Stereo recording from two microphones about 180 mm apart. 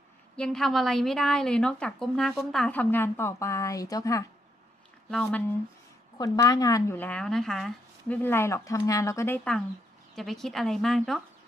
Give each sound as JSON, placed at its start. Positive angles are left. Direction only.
{"t": 0.4, "sound": "a woman's voice", "side_deg": 0}
{"t": 5.1, "sound": "a woman's voice", "side_deg": 5}
{"t": 6.1, "sound": "a woman's voice", "side_deg": 20}